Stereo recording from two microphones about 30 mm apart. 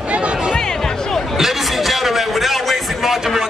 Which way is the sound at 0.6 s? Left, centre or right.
Left.